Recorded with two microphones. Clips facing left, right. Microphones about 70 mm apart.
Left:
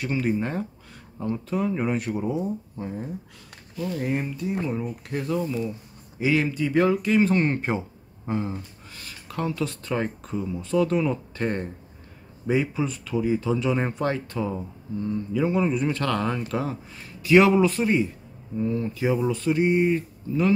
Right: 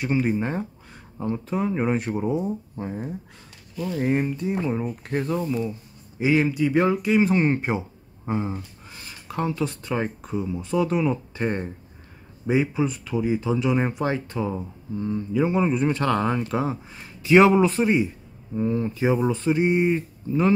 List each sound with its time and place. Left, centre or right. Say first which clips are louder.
0.0 s speech: right 2 dB; right